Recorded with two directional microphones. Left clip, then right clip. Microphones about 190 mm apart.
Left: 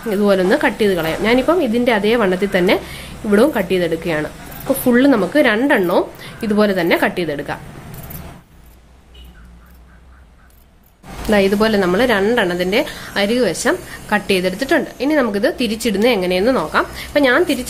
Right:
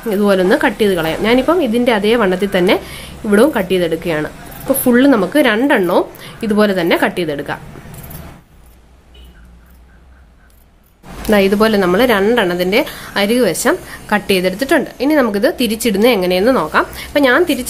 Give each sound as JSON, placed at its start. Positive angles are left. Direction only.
{"t": 0.1, "sound": "a woman's voice", "side_deg": -10}
{"t": 11.2, "sound": "a woman's voice", "side_deg": -15}